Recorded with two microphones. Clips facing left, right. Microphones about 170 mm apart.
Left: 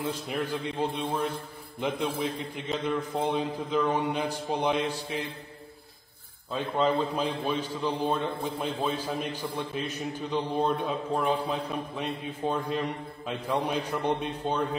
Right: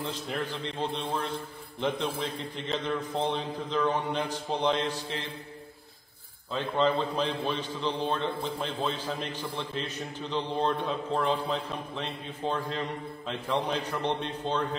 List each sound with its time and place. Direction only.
0.0 s a man's voice: 10° left (ahead or behind)
6.5 s a man's voice: 10° left (ahead or behind)